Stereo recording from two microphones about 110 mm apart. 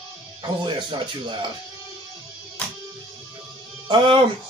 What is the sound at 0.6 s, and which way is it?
Speech, 45° right (ahead or behind).